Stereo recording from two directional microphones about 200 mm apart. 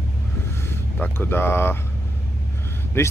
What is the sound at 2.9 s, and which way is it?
Speech, 10° left (ahead or behind).